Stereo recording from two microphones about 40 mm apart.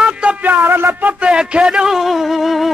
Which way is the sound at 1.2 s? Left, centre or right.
Right.